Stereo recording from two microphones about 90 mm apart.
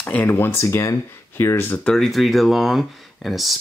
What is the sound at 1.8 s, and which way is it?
Speech, 5° left (ahead or behind).